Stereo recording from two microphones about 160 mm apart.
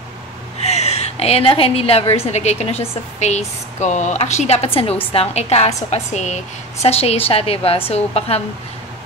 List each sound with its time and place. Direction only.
0.7 s a woman's voice: 40° left (ahead or behind)